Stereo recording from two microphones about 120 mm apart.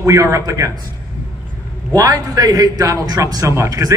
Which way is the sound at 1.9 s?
30° right (ahead or behind).